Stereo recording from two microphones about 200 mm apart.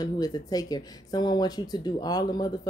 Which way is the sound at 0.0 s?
20° left (ahead or behind).